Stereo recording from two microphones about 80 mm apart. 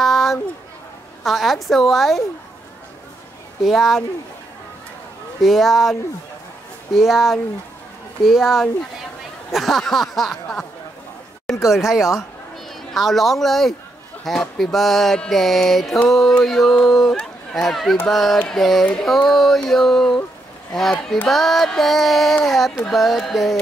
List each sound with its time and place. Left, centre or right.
0.0 s a sound: centre
1.2 s mantra: centre
3.6 s mantra: centre
5.4 s mantra: centre
7.0 s mantra: centre
11.4 s mantra: centre
17.2 s speech: centre
18.0 s mantra: centre